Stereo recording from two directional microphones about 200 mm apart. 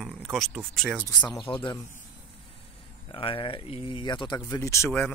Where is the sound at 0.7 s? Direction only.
Centre (ahead or behind).